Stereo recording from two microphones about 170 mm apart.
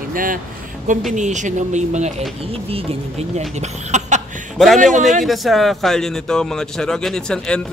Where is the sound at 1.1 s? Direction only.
45° right (ahead or behind).